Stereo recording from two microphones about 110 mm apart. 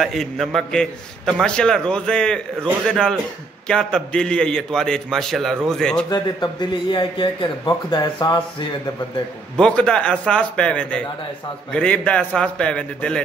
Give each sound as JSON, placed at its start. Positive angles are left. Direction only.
{"t": 0.0, "sound": "a man's voice", "side_deg": 0}
{"t": 6.0, "sound": "a man's voice", "side_deg": 40}
{"t": 9.6, "sound": "a man's voice", "side_deg": 10}